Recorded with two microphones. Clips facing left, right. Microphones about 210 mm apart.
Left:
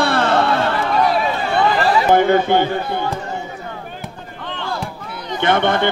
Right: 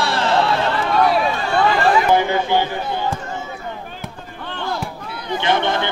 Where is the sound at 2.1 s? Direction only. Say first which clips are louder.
Left 3 dB; 55° left (ahead or behind).